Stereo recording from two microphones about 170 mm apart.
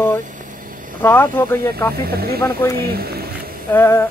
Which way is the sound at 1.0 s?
15° left (ahead or behind).